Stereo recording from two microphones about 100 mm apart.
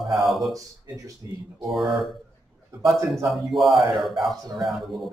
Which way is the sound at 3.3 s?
Centre (ahead or behind).